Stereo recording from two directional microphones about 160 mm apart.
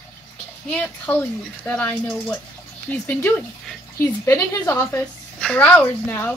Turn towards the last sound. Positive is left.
turn(degrees=10)  # may be behind; listen again after turning